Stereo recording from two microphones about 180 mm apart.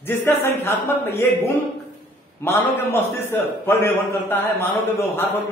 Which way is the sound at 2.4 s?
15° left (ahead or behind).